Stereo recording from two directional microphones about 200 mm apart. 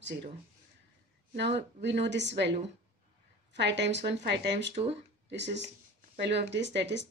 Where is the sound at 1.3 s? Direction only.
60° right (ahead or behind).